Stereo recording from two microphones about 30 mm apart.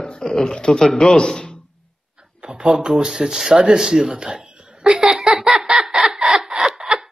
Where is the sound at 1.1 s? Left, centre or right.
Left.